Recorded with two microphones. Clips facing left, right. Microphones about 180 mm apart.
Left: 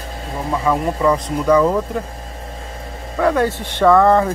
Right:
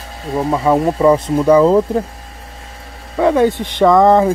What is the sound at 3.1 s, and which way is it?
Speech, 20° right (ahead or behind).